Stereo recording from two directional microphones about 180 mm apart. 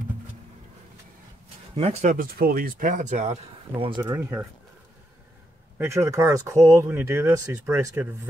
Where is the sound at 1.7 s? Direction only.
35° right (ahead or behind).